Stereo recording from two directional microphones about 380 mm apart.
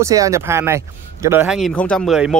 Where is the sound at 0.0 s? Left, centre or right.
Centre.